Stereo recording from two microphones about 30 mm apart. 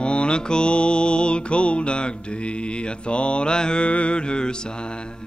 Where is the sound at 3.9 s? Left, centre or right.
Left.